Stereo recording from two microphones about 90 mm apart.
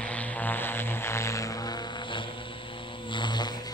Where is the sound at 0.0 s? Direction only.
15° left (ahead or behind); by 1.8 s 40° left (ahead or behind).